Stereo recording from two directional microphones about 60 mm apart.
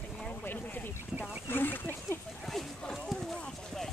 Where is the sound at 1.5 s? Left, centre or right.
Left.